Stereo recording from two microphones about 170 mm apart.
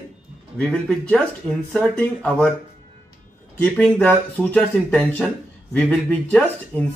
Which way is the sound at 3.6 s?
5° left (ahead or behind).